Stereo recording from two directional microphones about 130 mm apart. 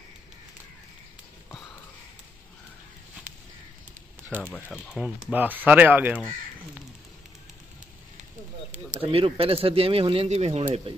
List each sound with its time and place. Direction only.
4.3 s speech: 15° right (ahead or behind)
8.9 s speech: 45° right (ahead or behind)